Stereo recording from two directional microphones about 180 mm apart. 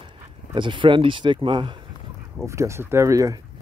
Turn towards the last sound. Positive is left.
turn(degrees=-20)  # may be behind; listen again after turning